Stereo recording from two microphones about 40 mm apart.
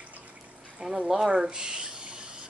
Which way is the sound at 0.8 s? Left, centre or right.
Centre.